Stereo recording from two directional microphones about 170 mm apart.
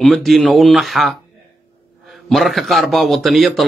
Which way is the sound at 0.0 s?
Centre (ahead or behind).